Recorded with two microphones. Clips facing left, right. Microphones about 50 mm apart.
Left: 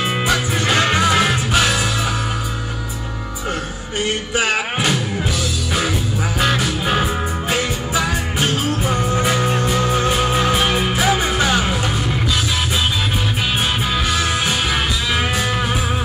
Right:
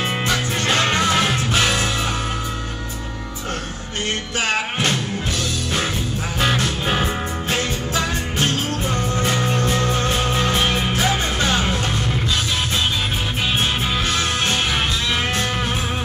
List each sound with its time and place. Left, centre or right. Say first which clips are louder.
0.0 s music: left 3 dB; centre
4.4 s music: left 2 dB; centre
6.4 s music: left 1 dB; centre